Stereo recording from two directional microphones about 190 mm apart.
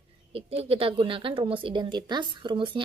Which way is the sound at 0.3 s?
30° right (ahead or behind).